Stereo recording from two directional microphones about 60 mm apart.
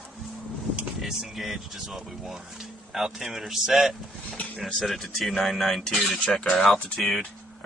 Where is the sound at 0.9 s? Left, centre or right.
Centre.